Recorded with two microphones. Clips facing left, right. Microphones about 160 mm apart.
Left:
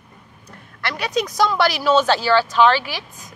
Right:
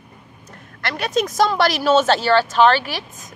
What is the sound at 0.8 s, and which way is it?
Speech, 50° right (ahead or behind).